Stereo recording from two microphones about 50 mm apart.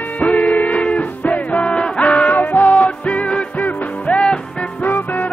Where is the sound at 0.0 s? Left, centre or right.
Left.